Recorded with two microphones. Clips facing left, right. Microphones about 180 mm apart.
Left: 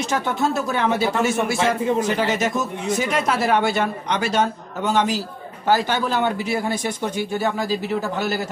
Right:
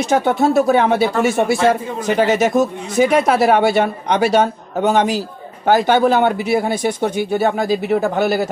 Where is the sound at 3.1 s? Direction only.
55° right (ahead or behind).